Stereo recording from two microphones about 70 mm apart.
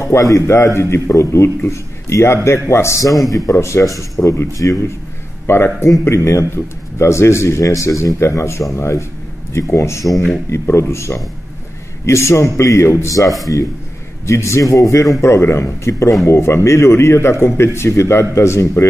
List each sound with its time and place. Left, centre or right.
0.0 s a man's voice: left
3.5 s a man's voice: left
5.5 s a man's voice: left
15.2 s a man's voice: left